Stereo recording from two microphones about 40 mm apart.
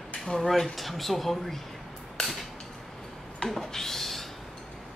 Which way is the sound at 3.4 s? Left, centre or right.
Centre.